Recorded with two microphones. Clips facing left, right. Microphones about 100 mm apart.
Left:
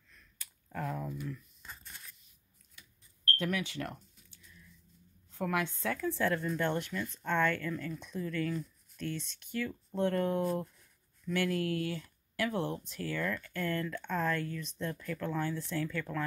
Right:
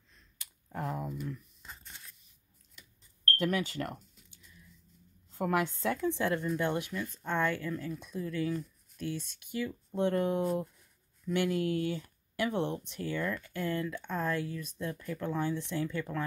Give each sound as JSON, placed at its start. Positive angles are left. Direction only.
{"t": 0.1, "sound": "a sound", "side_deg": -20}
{"t": 3.4, "sound": "a woman's voice", "side_deg": -40}
{"t": 5.3, "sound": "a woman's voice", "side_deg": -35}
{"t": 6.0, "sound": "speech", "side_deg": -15}